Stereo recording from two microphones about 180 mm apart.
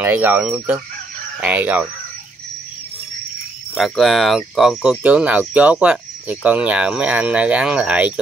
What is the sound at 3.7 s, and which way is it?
Speech, centre (ahead or behind).